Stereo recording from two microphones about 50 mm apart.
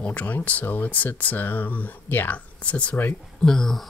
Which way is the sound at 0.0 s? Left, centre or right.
Left.